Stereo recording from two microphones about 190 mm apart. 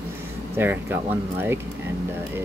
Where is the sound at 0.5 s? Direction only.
10° right (ahead or behind).